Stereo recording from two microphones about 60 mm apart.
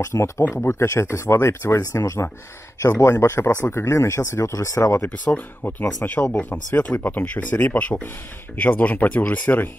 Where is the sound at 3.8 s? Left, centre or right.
Left.